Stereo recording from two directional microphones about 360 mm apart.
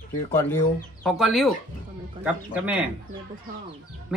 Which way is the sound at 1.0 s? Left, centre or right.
Centre.